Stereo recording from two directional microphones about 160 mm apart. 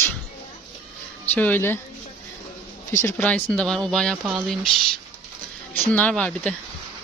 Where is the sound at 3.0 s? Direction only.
15° left (ahead or behind).